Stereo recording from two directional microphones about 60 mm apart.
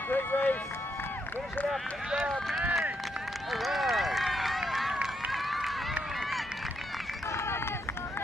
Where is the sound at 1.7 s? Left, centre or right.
Centre.